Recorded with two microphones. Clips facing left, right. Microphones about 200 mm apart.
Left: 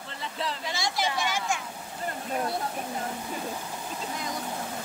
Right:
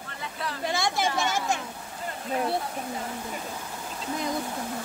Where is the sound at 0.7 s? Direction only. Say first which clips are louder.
Right 6 dB; 55° right (ahead or behind).